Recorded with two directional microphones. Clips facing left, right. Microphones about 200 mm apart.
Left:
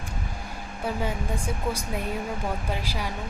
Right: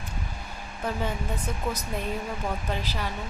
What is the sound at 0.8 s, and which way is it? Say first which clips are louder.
Speech: left 1 dB; 10° left (ahead or behind).